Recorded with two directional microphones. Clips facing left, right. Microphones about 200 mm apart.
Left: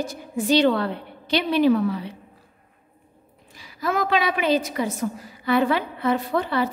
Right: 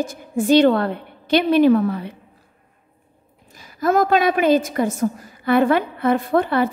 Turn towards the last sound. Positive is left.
turn(degrees=-55)  # may be behind; listen again after turning